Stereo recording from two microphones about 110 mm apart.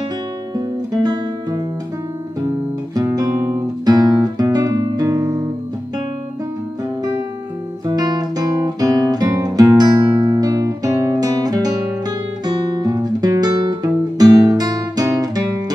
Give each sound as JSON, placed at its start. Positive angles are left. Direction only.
{"t": 0.6, "sound": "music", "side_deg": -35}
{"t": 3.2, "sound": "music", "side_deg": -30}
{"t": 3.8, "sound": "guitar", "side_deg": -35}
{"t": 7.8, "sound": "guitar", "side_deg": -35}